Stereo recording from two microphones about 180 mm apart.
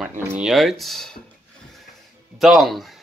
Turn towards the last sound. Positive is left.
turn(degrees=0)  # may be behind; listen again after turning